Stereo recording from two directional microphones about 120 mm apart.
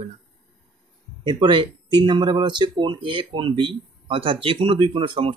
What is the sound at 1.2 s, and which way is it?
Speech, 40° right (ahead or behind).